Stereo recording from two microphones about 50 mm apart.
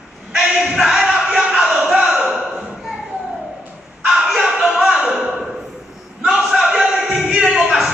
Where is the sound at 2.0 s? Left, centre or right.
Right.